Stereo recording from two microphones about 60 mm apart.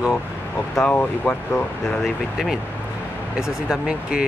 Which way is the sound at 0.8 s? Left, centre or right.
Left.